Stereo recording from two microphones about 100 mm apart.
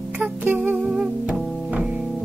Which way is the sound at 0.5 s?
15° right (ahead or behind).